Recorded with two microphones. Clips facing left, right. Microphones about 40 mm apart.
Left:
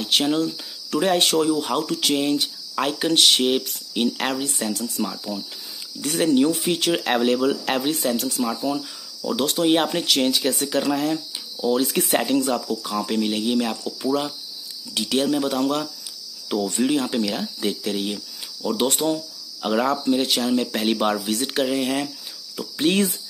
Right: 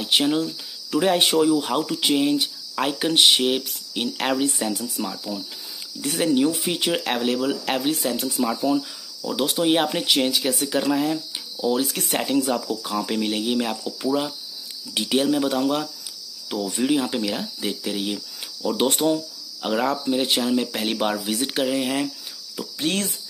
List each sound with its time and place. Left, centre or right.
0.0 s speech: centre
15.0 s speech: centre
22.8 s speech: centre